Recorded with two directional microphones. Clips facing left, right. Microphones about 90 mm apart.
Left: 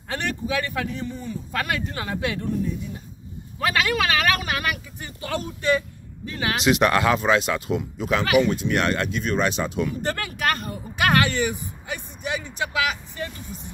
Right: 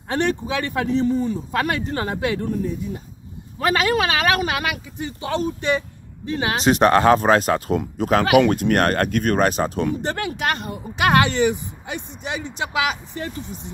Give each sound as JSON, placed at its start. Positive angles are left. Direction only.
{"t": 0.1, "sound": "speech", "side_deg": -30}
{"t": 4.6, "sound": "speech", "side_deg": -25}
{"t": 10.0, "sound": "speech", "side_deg": -30}